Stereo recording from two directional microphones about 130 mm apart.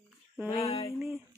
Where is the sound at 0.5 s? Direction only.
50° left (ahead or behind).